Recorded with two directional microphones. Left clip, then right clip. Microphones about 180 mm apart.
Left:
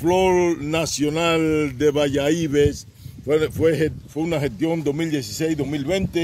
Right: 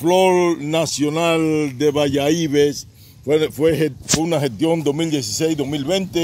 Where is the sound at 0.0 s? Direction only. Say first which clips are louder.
Right 3 dB; 20° right (ahead or behind).